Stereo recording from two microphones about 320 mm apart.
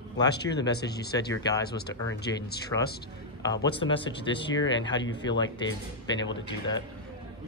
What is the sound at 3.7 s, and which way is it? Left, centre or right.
Speech, centre.